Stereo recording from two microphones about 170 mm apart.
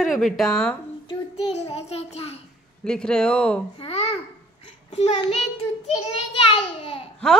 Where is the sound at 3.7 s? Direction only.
35° left (ahead or behind).